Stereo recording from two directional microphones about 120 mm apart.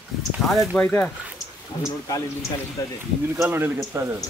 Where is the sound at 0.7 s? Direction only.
15° left (ahead or behind).